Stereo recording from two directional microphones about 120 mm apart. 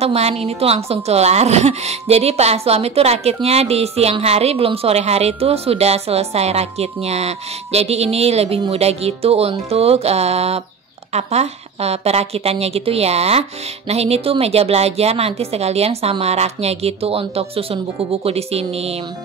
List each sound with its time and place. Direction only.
0.0 s a woman's voice: 60° right (ahead or behind)